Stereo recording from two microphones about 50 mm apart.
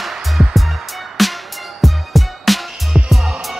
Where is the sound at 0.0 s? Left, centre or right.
Centre.